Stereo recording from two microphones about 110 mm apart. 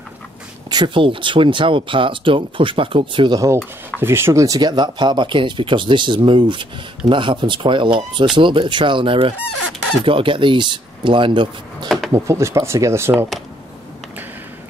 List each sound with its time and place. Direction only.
0.7 s speech: 45° right (ahead or behind)
4.0 s speech: 20° right (ahead or behind)
4.6 s speech: 40° right (ahead or behind)
12.1 s speech: 25° right (ahead or behind)